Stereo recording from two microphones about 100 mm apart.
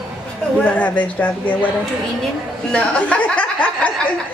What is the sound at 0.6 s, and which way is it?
Speech, 15° left (ahead or behind).